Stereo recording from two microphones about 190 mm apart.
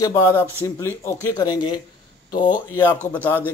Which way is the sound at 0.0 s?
15° left (ahead or behind).